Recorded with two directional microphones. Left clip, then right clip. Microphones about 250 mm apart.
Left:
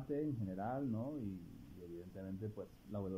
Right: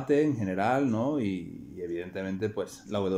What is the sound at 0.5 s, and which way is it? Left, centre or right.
Speech, centre.